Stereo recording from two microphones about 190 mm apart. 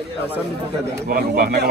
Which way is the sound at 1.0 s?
50° right (ahead or behind).